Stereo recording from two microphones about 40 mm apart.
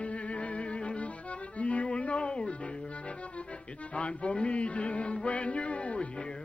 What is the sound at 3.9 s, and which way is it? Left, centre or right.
Music, left.